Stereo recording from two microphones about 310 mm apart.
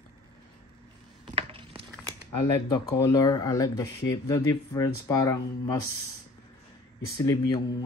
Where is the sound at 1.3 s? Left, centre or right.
Centre.